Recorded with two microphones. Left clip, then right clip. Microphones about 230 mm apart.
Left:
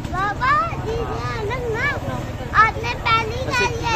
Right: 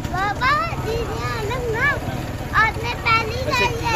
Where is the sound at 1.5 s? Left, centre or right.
Centre.